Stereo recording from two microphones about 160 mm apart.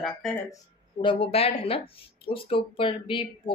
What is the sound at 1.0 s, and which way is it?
A man's voice, 35° left (ahead or behind).